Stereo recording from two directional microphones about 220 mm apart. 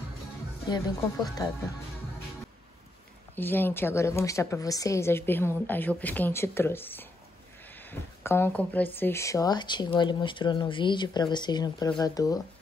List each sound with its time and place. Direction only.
0.7 s a woman's voice: 15° left (ahead or behind)
3.3 s a woman's voice: 10° left (ahead or behind)